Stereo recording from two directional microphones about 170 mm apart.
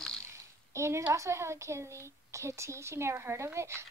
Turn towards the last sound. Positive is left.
turn(degrees=-15)  # may be behind; listen again after turning